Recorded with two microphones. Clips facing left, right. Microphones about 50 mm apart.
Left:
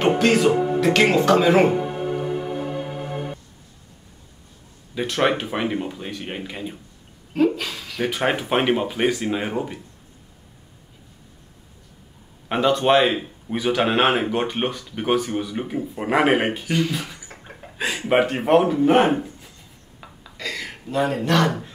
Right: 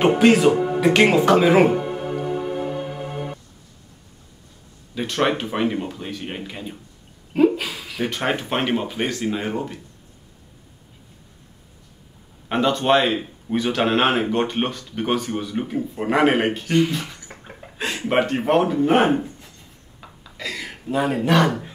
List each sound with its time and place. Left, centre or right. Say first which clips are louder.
0.0 s speech: right 2 dB; centre
4.9 s speech: left 1 dB; centre
7.3 s a sound: right 2 dB; centre
8.1 s speech: left 3 dB; centre
12.4 s speech: left 1 dB; centre
20.0 s a sound: even; centre